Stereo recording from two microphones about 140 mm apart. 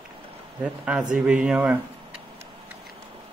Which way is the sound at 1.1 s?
5° right (ahead or behind).